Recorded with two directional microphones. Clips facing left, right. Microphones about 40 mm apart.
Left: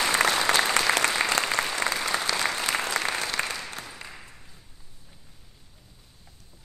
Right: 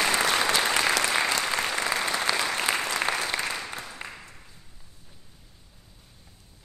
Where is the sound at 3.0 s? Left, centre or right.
Centre.